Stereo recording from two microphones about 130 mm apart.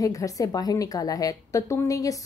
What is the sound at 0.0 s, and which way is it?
A woman's voice, 25° left (ahead or behind).